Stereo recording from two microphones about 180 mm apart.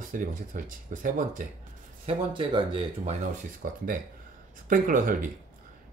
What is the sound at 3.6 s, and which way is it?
Speech, 50° right (ahead or behind).